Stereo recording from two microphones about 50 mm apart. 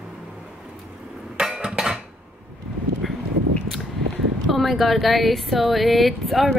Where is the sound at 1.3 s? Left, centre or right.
Centre.